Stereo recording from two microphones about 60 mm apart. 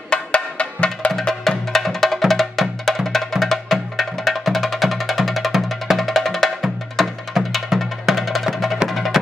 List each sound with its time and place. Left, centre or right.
0.1 s music: centre